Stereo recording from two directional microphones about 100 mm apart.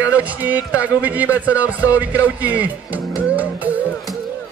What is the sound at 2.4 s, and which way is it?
Speech, 15° right (ahead or behind).